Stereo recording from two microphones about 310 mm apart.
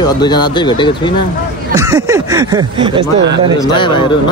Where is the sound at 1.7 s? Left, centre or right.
Centre.